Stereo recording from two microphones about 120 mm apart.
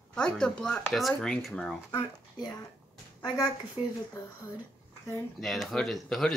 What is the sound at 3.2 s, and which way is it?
Speech, 40° left (ahead or behind).